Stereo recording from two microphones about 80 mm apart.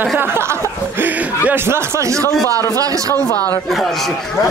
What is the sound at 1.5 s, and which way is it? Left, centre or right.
Speech, right.